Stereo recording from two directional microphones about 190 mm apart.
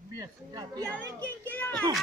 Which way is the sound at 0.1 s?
20° right (ahead or behind).